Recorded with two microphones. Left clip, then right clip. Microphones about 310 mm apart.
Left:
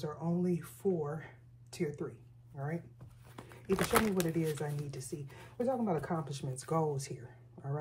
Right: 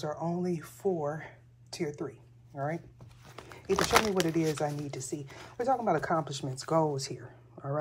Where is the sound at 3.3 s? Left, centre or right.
Right.